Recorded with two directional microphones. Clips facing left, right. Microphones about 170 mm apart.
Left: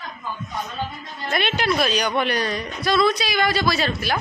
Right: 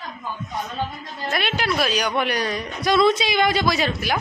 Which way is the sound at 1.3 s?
5° right (ahead or behind).